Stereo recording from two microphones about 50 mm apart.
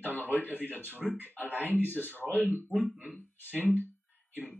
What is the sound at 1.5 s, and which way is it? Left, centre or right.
Speech, right.